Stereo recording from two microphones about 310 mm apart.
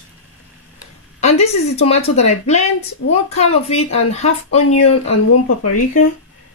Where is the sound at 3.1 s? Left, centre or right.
Centre.